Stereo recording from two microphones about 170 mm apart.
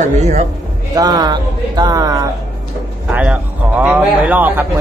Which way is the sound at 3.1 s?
10° right (ahead or behind).